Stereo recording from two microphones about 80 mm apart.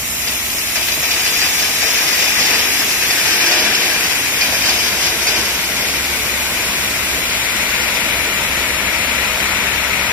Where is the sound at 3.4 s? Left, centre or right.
Centre.